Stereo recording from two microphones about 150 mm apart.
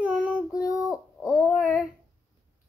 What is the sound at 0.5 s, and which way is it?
Child singing, 20° left (ahead or behind).